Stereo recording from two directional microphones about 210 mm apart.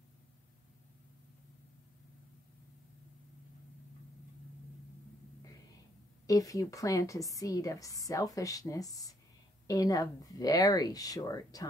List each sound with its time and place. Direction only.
6.2 s a woman's voice: 15° left (ahead or behind)